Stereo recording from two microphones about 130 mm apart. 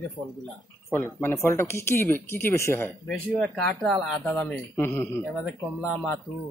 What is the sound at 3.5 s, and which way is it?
Speech, 5° left (ahead or behind).